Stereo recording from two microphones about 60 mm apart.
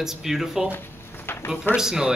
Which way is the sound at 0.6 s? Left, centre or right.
Left.